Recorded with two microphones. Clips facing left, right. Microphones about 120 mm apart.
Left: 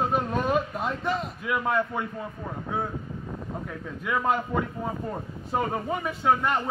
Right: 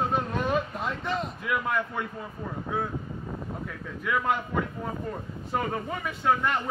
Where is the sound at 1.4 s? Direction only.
25° left (ahead or behind).